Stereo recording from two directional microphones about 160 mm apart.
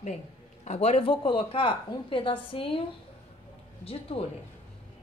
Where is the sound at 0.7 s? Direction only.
40° left (ahead or behind).